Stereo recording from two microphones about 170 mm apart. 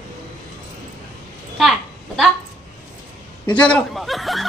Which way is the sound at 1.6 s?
Centre (ahead or behind).